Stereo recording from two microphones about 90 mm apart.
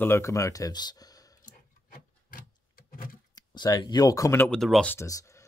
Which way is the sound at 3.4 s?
45° left (ahead or behind).